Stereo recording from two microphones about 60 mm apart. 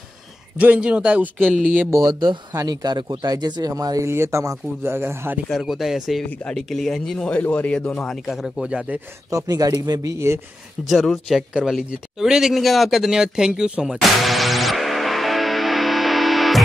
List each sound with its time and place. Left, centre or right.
0.6 s a man's voice: right
1.9 s speech: right
4.0 s speech: right
4.9 s speech: right
5.6 s speech: centre
6.4 s speech: centre
7.5 s speech: left
7.9 s speech: centre
8.6 s a man's voice: right
9.3 s speech: right
10.1 s speech: right
10.9 s speech: centre
13.8 s music: centre